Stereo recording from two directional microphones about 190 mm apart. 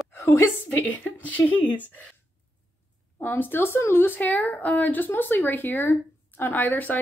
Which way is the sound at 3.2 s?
10° left (ahead or behind).